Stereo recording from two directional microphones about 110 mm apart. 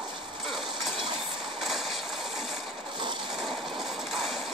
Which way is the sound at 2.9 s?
45° right (ahead or behind).